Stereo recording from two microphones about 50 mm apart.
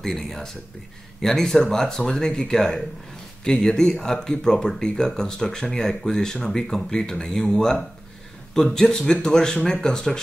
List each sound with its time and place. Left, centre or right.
0.0 s speech: centre